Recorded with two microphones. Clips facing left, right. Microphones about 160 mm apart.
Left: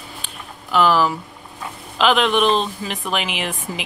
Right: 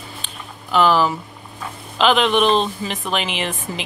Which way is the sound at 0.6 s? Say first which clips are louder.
Right 1 dB; 5° left (ahead or behind).